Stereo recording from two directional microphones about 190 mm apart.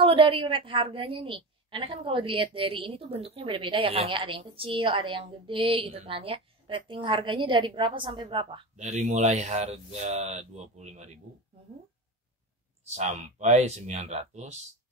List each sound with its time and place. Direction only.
0.0 s a woman's voice: 30° right (ahead or behind)
8.7 s speech: 40° right (ahead or behind)
12.9 s speech: 35° right (ahead or behind)